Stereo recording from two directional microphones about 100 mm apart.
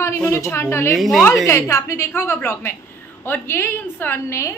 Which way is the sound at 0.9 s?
Centre (ahead or behind).